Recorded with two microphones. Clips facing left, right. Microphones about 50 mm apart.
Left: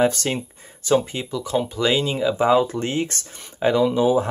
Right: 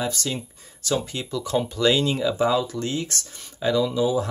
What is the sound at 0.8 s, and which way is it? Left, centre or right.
Speech, left.